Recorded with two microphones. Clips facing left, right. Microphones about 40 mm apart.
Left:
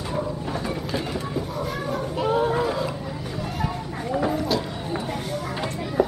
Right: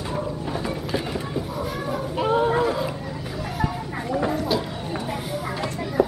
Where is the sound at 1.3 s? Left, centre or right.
Centre.